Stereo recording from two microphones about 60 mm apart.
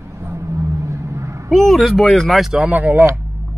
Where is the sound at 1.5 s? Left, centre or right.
Centre.